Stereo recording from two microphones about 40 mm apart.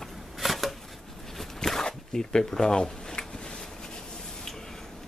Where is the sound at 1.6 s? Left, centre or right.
Centre.